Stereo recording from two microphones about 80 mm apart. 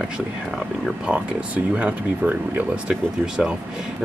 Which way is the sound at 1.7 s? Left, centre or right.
Centre.